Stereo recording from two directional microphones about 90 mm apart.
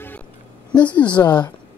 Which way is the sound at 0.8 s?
15° left (ahead or behind).